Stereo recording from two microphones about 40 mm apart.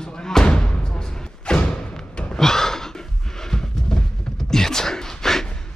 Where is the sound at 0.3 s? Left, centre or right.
Centre.